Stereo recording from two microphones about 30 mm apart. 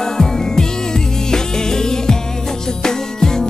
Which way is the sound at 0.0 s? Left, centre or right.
Centre.